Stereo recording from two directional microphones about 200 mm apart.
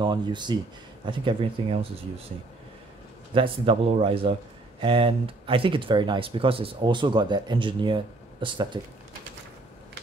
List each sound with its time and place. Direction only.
0.0 s a man's voice: 20° right (ahead or behind)
3.3 s a man's voice: 25° right (ahead or behind)